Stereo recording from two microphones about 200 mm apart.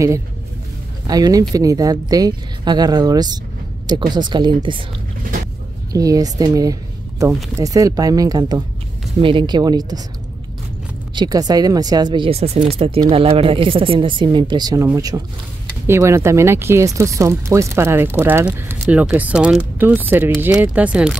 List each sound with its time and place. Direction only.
1.0 s speech: 20° right (ahead or behind)
5.9 s speech: 15° right (ahead or behind)
11.1 s speech: 20° right (ahead or behind)